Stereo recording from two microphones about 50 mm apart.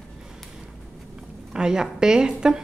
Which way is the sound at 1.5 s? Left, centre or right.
Centre.